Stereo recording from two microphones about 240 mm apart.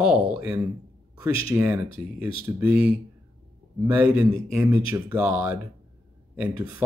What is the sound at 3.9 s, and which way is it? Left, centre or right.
Speech, centre.